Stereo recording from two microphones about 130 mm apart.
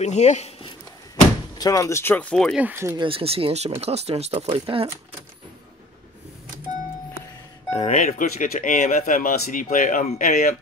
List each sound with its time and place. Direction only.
0.0 s speech: 60° left (ahead or behind)
1.6 s speech: 25° left (ahead or behind); by 2.5 s 10° left (ahead or behind)
2.5 s speech: 15° right (ahead or behind)
3.0 s speech: 45° right (ahead or behind)
7.7 s speech: 60° left (ahead or behind); by 10.5 s 85° left